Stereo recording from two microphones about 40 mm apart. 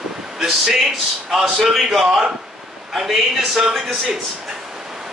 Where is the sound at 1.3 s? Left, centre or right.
Centre.